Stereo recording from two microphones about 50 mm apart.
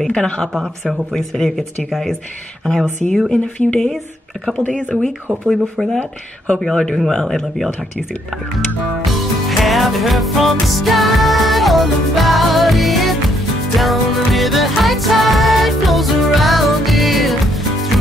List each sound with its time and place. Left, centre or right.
0.1 s speech: centre
3.3 s speech: left
4.9 s speech: left
6.6 s speech: centre
9.1 s music: centre